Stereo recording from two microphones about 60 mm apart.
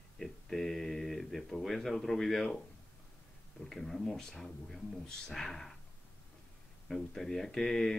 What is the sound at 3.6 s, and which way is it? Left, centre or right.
Speech, centre.